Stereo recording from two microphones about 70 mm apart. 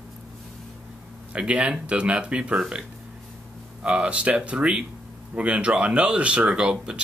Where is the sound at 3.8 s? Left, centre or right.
Centre.